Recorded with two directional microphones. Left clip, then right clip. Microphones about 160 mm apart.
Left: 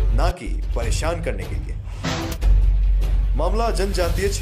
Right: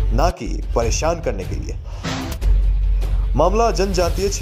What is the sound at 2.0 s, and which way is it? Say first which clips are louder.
Music: even; centre (ahead or behind).